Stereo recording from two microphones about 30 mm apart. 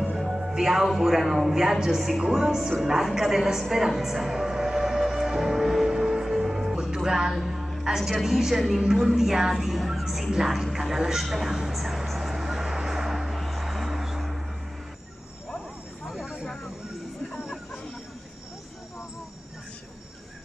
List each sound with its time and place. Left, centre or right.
0.1 s music: centre
0.9 s speech: centre
3.7 s music: centre
5.9 s vehicle: centre
6.3 s music: centre
7.3 s a sound: centre
7.8 s speech: centre
9.5 s speech: centre
12.2 s vehicle: centre
13.3 s vehicle: centre
16.1 s vehicle: centre